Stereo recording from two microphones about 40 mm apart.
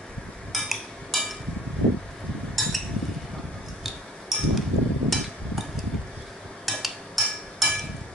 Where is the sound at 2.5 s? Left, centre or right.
Centre.